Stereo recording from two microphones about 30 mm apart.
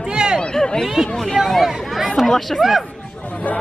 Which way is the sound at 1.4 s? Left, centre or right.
Centre.